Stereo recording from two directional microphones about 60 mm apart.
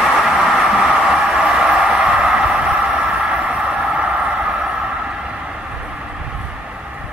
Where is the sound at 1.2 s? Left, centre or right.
Centre.